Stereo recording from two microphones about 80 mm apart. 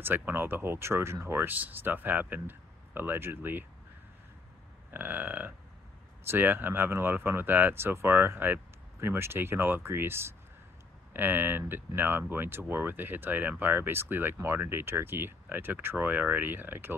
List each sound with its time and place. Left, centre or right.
0.0 s speech: right
4.9 s speech: right